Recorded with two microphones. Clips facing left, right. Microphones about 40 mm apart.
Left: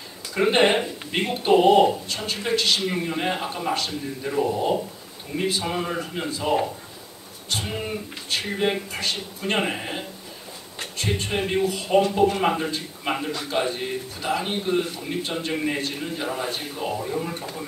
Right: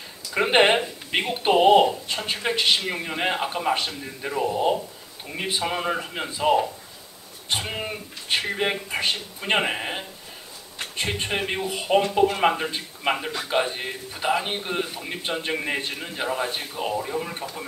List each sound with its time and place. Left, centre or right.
0.3 s a man's voice: right
5.3 s a man's voice: right